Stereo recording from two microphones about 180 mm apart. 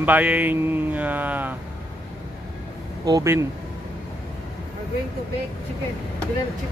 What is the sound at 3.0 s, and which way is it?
Speech, 20° right (ahead or behind).